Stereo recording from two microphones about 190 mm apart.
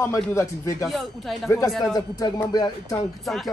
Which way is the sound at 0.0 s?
15° left (ahead or behind).